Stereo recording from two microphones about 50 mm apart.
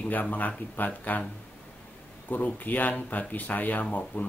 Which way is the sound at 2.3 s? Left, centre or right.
Left.